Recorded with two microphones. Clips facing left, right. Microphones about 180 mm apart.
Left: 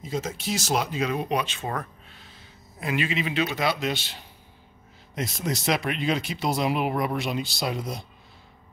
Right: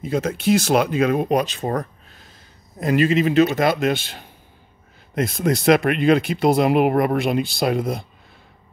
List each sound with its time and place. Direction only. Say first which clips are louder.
0.0 s speech: right 9 dB; 60° right (ahead or behind)